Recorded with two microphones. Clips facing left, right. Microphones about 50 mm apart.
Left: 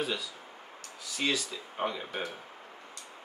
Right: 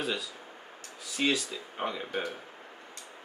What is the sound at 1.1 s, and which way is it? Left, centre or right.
Speech, centre.